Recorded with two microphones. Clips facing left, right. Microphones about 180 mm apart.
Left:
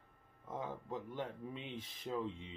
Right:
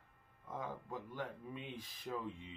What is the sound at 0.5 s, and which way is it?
Speech, 25° left (ahead or behind).